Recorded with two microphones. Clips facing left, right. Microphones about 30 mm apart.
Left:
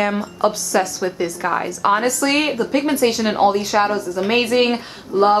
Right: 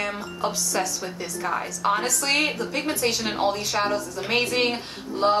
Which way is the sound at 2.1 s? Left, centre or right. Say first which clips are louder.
Left 5 dB; centre.